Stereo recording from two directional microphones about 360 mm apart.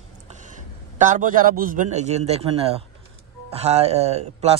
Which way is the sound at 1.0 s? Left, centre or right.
Right.